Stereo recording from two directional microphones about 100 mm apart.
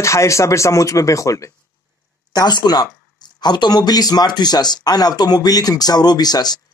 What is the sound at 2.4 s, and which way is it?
Speech, 45° left (ahead or behind).